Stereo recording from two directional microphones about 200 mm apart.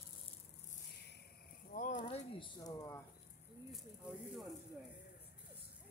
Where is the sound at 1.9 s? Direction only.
20° left (ahead or behind).